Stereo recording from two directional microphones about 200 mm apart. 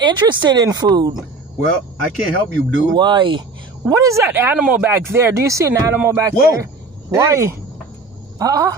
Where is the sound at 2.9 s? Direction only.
20° right (ahead or behind).